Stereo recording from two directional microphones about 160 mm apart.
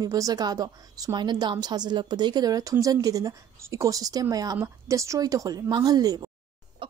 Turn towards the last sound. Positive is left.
turn(degrees=-30)  # may be behind; listen again after turning